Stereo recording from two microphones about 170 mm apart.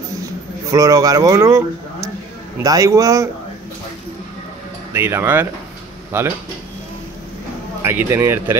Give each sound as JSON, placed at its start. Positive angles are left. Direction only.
{"t": 0.7, "sound": "a man's voice", "side_deg": -20}
{"t": 4.9, "sound": "speech", "side_deg": -10}
{"t": 7.8, "sound": "speech", "side_deg": -15}